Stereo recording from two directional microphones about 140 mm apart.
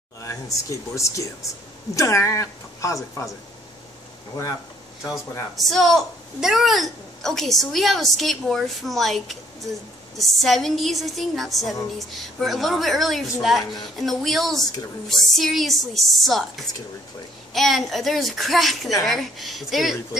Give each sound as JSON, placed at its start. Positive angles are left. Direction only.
{"t": 0.2, "sound": "speech", "side_deg": 20}
{"t": 5.6, "sound": "a woman's voice", "side_deg": 0}